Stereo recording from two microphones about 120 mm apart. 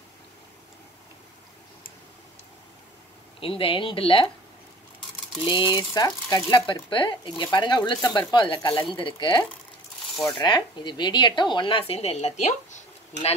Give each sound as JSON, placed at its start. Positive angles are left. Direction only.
{"t": 3.3, "sound": "speech", "side_deg": 50}
{"t": 5.3, "sound": "speech", "side_deg": 40}
{"t": 10.4, "sound": "speech", "side_deg": 40}